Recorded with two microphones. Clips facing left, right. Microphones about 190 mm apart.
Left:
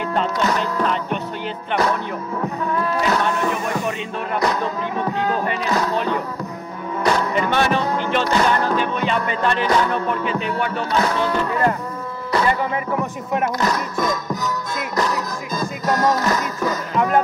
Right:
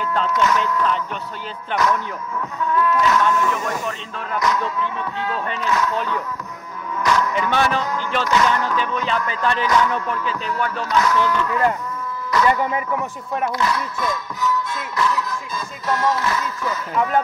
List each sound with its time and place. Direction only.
0.3 s speech: 35° left (ahead or behind)
5.9 s music: 60° left (ahead or behind)
7.0 s music: 30° left (ahead or behind)
7.3 s music: 55° left (ahead or behind)
8.3 s speech: 35° left (ahead or behind)
8.7 s music: 60° left (ahead or behind)
10.9 s speech: 30° left (ahead or behind)
12.3 s music: 30° left (ahead or behind)
13.6 s music: 40° left (ahead or behind)